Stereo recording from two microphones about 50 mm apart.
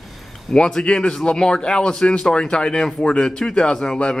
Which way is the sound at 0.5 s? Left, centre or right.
Centre.